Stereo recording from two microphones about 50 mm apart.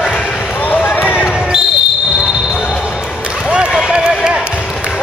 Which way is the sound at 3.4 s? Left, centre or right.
Centre.